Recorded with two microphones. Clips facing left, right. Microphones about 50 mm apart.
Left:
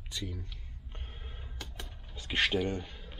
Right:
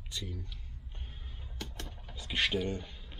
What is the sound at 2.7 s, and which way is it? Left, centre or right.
Speech, left.